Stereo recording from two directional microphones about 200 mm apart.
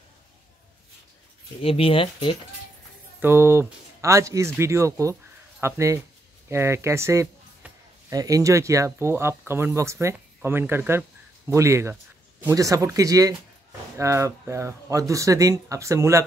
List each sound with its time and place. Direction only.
1.6 s speech: 30° left (ahead or behind)
3.2 s speech: 10° right (ahead or behind)